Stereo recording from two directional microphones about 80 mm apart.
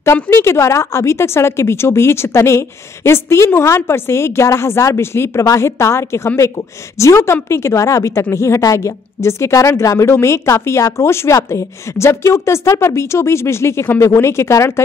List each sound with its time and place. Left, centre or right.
0.0 s a woman's voice: left